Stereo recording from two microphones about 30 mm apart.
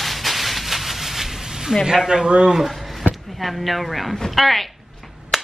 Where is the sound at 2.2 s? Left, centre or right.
Right.